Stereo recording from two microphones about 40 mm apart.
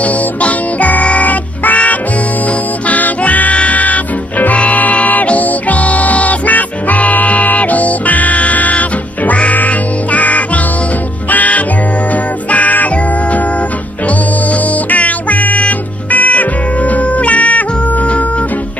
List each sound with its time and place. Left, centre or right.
0.0 s music: left